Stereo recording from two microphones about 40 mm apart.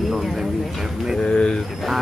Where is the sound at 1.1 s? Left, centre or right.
Centre.